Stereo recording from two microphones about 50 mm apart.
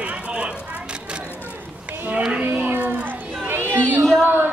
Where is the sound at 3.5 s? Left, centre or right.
Right.